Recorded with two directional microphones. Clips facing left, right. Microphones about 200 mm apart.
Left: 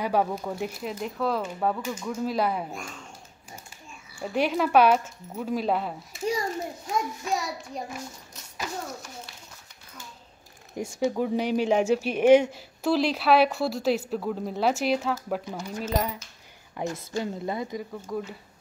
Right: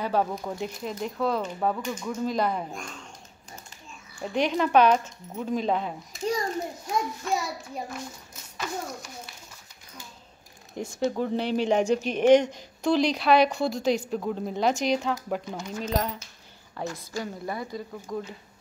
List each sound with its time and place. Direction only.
0.0 s speech: 10° left (ahead or behind)
4.1 s speech: 5° left (ahead or behind)
10.8 s speech: 10° left (ahead or behind)
16.7 s a woman's voice: 20° left (ahead or behind)
18.0 s speech: 5° left (ahead or behind)